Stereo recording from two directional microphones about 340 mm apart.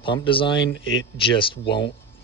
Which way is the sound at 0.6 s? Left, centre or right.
Left.